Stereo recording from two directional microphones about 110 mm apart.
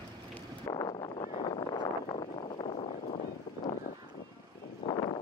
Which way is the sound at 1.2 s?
50° left (ahead or behind).